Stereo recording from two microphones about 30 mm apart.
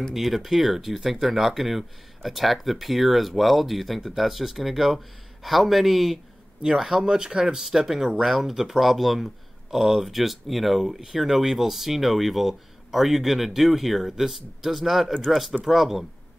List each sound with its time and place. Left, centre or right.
0.1 s speech: centre
6.8 s speech: centre
7.6 s speech: centre